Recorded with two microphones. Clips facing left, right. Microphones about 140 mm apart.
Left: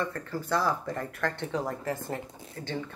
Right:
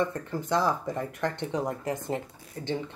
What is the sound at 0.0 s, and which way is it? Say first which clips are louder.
Speech: right 3 dB; 20° right (ahead or behind).